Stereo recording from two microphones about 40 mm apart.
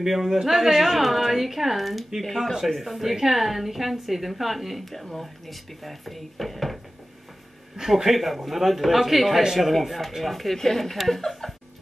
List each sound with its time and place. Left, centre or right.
0.0 s a woman's voice: centre
7.7 s a woman's voice: centre